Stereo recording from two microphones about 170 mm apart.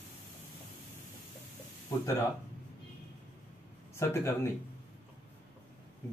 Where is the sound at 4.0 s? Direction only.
15° left (ahead or behind).